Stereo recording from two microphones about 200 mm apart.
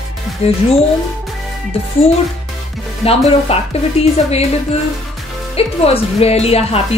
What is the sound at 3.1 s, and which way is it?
A woman's voice, 30° left (ahead or behind).